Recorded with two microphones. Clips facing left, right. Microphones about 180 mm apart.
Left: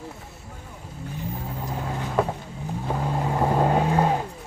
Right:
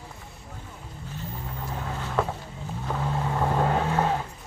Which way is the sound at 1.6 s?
15° left (ahead or behind).